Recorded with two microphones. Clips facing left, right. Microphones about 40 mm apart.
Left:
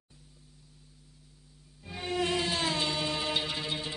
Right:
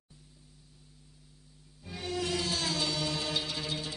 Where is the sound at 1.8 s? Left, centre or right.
Left.